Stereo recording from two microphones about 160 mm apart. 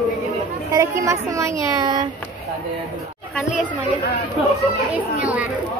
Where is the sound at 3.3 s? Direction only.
Centre (ahead or behind).